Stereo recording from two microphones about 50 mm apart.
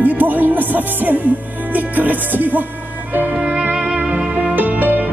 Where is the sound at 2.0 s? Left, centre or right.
Right.